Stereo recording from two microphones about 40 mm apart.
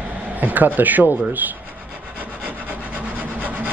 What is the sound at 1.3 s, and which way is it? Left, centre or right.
Rub, right.